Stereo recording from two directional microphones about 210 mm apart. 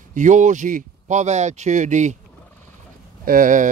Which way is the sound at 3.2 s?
40° right (ahead or behind).